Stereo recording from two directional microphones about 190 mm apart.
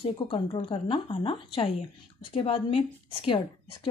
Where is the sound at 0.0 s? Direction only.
30° left (ahead or behind).